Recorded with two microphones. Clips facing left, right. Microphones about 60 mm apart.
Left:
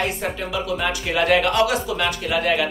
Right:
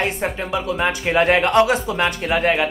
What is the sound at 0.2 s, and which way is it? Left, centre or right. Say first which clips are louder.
A man's voice: right 2 dB; right.